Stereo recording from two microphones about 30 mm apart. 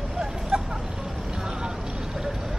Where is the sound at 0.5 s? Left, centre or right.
Right.